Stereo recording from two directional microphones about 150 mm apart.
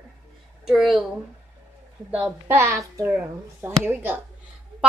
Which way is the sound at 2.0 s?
10° right (ahead or behind).